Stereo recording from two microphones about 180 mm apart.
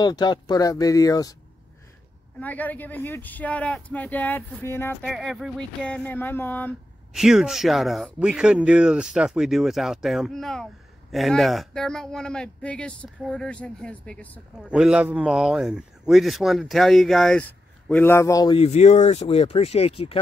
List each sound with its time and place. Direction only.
0.0 s speech: 25° left (ahead or behind)
2.4 s speech: 10° left (ahead or behind)
5.0 s speech: centre (ahead or behind)
7.2 s speech: centre (ahead or behind)
14.6 s speech: 5° right (ahead or behind); by 18.7 s 25° left (ahead or behind)
18.7 s speech: 40° left (ahead or behind)